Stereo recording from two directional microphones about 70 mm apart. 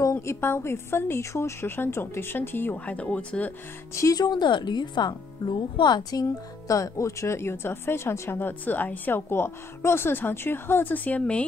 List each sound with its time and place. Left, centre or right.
0.0 s speech: left; by 3.5 s centre
4.1 s speech: left
6.7 s speech: left; by 11.4 s centre